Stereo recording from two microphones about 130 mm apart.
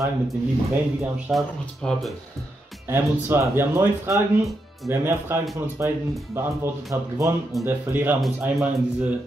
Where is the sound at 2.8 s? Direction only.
20° right (ahead or behind).